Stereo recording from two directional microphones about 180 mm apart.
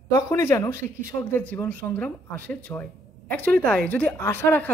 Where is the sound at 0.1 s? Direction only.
15° left (ahead or behind).